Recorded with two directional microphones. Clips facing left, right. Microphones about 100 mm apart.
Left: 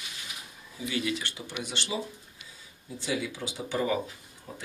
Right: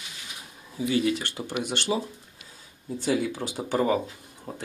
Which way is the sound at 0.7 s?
35° right (ahead or behind).